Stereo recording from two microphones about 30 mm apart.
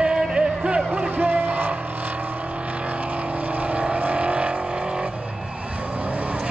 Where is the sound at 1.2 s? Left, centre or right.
Right.